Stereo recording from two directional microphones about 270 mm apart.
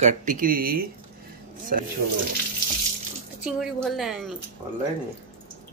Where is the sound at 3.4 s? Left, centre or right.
Centre.